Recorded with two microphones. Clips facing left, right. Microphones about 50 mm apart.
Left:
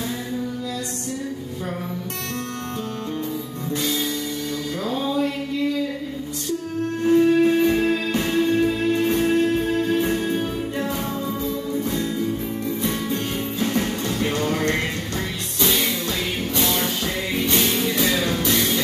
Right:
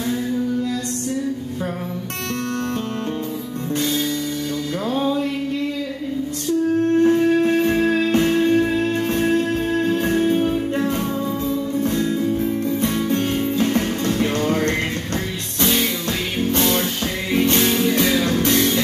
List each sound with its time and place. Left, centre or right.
7.0 s music: right
17.3 s music: right